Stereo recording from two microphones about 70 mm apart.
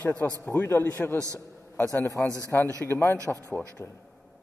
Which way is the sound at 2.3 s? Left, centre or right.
Right.